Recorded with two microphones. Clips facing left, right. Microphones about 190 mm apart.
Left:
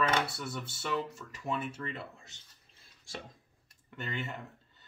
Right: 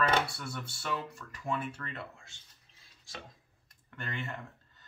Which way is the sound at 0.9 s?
20° left (ahead or behind).